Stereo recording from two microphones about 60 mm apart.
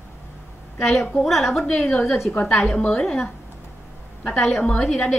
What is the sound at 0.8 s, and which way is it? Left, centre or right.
A woman's voice, centre.